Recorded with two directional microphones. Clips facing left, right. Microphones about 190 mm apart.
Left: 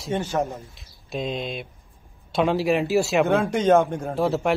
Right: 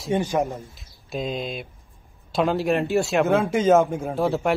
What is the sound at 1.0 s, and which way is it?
Speech, centre (ahead or behind).